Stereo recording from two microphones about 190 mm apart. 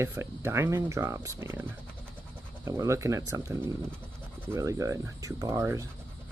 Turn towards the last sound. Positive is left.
turn(degrees=-15)  # may be behind; listen again after turning